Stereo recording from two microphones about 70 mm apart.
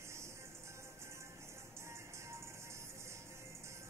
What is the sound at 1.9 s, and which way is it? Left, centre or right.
Music, right.